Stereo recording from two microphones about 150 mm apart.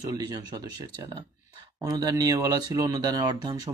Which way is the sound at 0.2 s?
30° right (ahead or behind).